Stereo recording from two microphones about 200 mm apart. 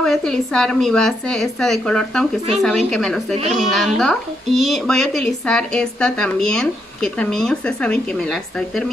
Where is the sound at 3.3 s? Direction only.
35° right (ahead or behind).